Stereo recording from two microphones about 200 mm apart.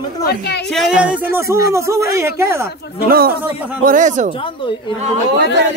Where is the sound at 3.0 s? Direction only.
50° right (ahead or behind).